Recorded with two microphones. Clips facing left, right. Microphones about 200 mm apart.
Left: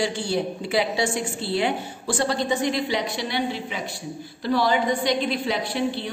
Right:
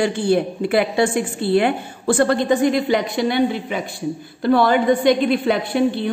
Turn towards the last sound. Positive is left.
turn(degrees=-55)  # may be behind; listen again after turning